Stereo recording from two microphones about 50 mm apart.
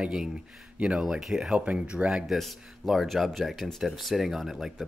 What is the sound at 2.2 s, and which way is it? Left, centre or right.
Speech, centre.